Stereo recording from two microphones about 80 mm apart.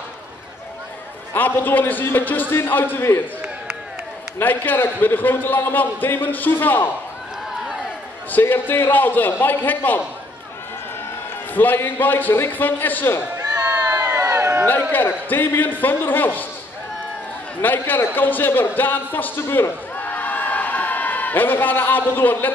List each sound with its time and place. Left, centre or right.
1.3 s a man's voice: left
4.4 s a man's voice: left
8.3 s a man's voice: left
11.5 s a man's voice: left
13.4 s a sound: right
14.9 s a man's voice: left
17.6 s a man's voice: left